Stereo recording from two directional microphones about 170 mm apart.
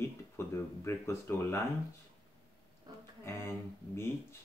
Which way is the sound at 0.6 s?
15° left (ahead or behind).